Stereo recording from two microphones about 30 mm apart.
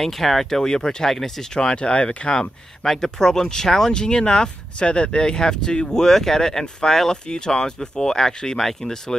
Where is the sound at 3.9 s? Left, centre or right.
Left.